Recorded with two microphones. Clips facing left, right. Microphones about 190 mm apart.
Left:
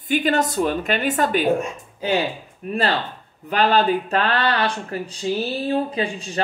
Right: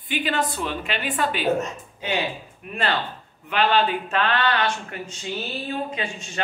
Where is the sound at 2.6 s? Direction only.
35° left (ahead or behind).